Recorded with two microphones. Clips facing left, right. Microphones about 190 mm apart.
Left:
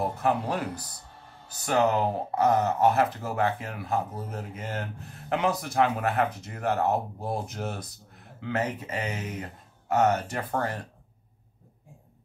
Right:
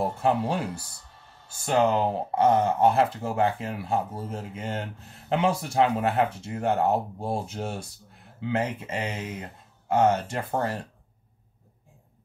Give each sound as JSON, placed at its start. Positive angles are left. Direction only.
{"t": 0.2, "sound": "speech", "side_deg": -30}